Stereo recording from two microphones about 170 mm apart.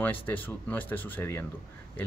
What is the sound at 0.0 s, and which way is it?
Speech, 10° left (ahead or behind).